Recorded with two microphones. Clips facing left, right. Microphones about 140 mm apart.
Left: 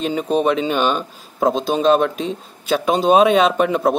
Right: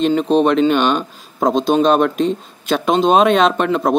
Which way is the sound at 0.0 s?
10° left (ahead or behind).